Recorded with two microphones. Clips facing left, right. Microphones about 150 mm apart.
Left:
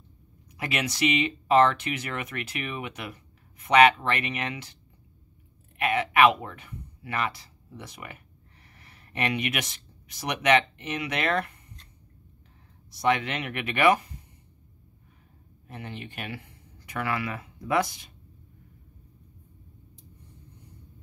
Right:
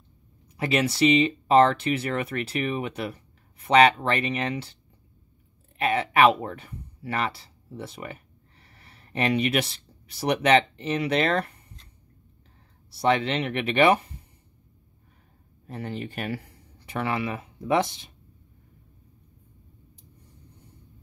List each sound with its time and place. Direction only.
0.6 s speech: 30° right (ahead or behind)
5.8 s speech: 30° right (ahead or behind)
12.9 s speech: 30° right (ahead or behind)
15.6 s speech: 35° right (ahead or behind)